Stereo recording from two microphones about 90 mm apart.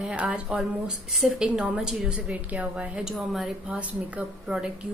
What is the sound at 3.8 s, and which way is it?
Speech, 15° right (ahead or behind).